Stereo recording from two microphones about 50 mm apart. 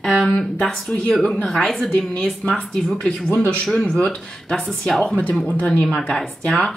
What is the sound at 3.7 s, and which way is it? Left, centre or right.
Speech, centre.